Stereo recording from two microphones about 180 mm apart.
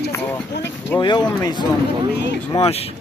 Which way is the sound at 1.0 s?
25° left (ahead or behind).